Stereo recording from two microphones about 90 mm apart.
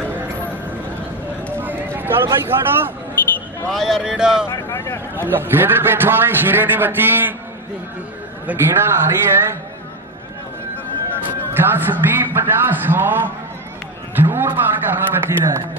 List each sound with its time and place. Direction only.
2.0 s speech: 25° right (ahead or behind)
3.7 s speech: 5° right (ahead or behind)
4.5 s vehicle: 30° left (ahead or behind)
5.1 s a man's voice: 25° right (ahead or behind)
8.5 s a man's voice: 25° right (ahead or behind)
11.5 s a man's voice: 25° right (ahead or behind)
14.1 s a sound: 25° right (ahead or behind)
14.9 s a man's voice: 25° right (ahead or behind)